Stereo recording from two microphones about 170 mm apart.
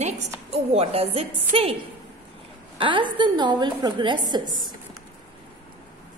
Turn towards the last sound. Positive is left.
turn(degrees=-25)  # may be behind; listen again after turning